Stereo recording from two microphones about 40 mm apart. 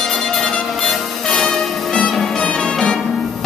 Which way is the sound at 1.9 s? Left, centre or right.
Left.